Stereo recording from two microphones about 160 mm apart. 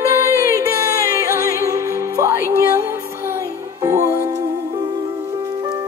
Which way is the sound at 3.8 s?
20° right (ahead or behind).